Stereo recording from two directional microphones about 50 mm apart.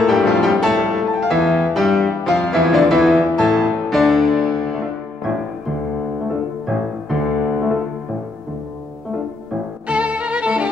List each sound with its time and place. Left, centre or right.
0.0 s music: centre
7.1 s music: centre
7.3 s music: centre
9.8 s violin: right